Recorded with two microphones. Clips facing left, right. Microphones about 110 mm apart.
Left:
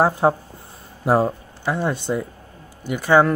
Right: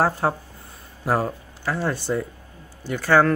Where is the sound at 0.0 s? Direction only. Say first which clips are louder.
Left 4 dB; 20° left (ahead or behind).